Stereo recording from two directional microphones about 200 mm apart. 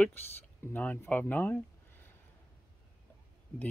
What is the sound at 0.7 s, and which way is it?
Speech, 10° left (ahead or behind).